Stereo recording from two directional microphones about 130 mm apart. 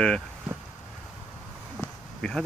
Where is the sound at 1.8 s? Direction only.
5° left (ahead or behind).